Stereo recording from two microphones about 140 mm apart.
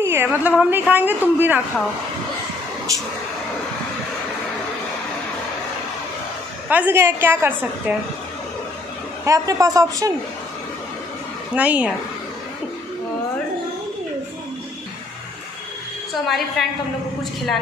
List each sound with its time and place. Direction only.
0.0 s a woman's voice: 15° right (ahead or behind)
6.7 s a woman's voice: 15° right (ahead or behind)
9.2 s a man's voice: 25° right (ahead or behind)
11.5 s a woman's voice: 10° right (ahead or behind)
16.3 s a woman's voice: centre (ahead or behind)